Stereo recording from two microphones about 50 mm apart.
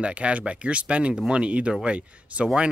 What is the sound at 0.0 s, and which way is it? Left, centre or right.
Speech, right.